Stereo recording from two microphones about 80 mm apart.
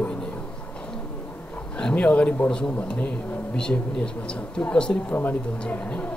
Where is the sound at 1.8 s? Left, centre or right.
Centre.